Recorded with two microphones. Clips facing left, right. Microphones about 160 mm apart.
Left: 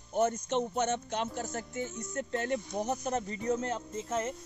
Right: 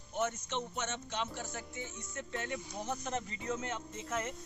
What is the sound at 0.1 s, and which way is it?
Speech, 40° left (ahead or behind).